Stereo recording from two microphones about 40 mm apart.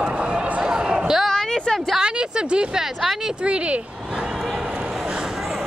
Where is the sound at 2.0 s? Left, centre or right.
Right.